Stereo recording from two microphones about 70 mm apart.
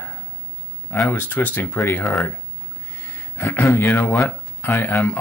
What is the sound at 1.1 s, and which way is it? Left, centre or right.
Speech, left.